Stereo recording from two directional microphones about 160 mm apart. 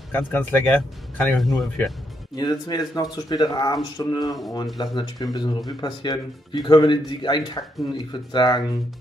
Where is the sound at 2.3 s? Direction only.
25° left (ahead or behind).